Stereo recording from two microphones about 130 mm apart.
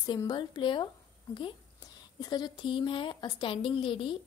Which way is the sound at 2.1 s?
35° left (ahead or behind).